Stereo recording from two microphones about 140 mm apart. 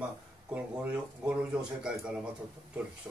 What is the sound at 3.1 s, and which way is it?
Speech, 20° right (ahead or behind).